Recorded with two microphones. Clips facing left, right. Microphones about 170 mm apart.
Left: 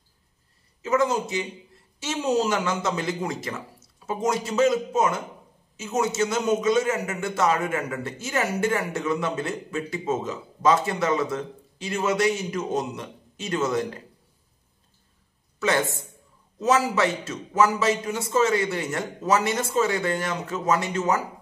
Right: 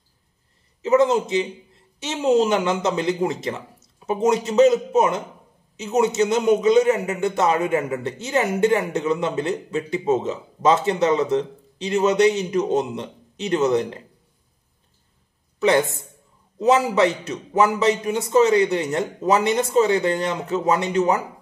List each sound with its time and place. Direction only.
0.8 s a man's voice: 20° right (ahead or behind)
16.5 s a man's voice: 20° right (ahead or behind)